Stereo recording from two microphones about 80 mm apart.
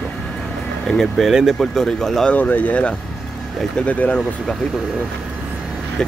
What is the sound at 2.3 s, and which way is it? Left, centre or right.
Speech, left.